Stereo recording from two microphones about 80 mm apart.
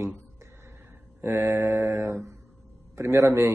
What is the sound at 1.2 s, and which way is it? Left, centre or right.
A man's voice, right.